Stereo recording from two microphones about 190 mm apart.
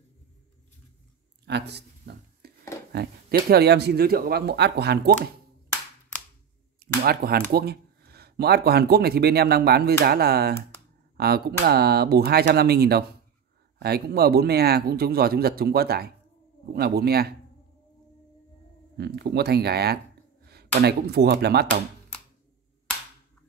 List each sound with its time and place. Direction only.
1.4 s a sound: 65° right (ahead or behind)
2.9 s speech: 55° right (ahead or behind)
7.0 s speech: 55° right (ahead or behind)
18.9 s speech: 60° right (ahead or behind)